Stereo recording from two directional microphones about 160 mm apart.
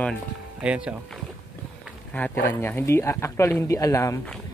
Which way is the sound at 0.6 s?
5° right (ahead or behind).